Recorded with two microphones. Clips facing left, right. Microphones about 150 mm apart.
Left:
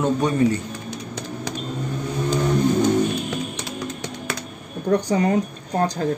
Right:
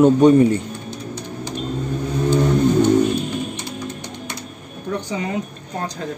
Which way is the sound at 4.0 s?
90° left.